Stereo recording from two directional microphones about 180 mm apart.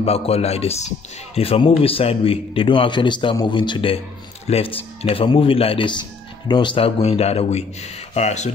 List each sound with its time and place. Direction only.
0.0 s a man's voice: 35° left (ahead or behind)